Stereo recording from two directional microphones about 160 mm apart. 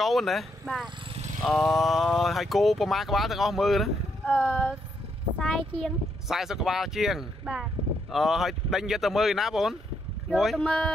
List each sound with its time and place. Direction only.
0.0 s speech: centre (ahead or behind)